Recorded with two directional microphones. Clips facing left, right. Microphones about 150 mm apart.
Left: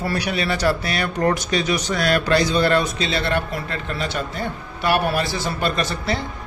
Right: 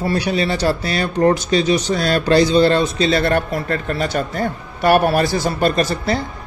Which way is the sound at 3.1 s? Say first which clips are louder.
Right 6 dB; 45° right (ahead or behind).